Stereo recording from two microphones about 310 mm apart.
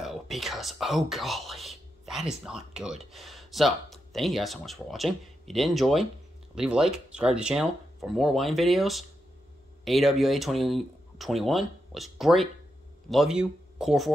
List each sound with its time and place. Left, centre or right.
0.0 s speech: centre